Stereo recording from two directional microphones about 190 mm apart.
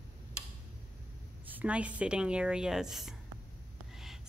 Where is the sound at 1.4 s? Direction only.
10° right (ahead or behind).